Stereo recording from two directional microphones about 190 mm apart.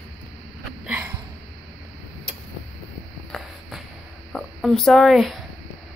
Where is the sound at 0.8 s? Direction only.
10° right (ahead or behind).